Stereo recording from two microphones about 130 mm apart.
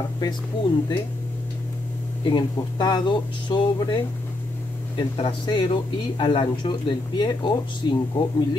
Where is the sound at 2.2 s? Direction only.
35° left (ahead or behind).